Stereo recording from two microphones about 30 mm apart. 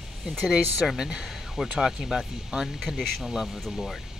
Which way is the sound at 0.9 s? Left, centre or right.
Right.